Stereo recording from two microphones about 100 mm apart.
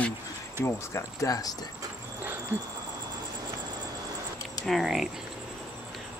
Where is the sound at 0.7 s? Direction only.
30° left (ahead or behind).